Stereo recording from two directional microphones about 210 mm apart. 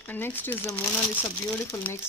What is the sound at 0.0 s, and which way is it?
Speech, 10° left (ahead or behind).